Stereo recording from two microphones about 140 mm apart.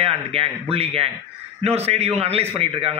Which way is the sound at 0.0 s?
45° right (ahead or behind).